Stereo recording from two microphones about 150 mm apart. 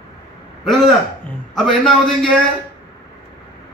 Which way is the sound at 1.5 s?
5° left (ahead or behind).